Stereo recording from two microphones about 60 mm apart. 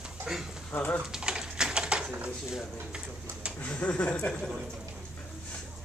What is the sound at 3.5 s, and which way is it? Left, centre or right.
Speech, left.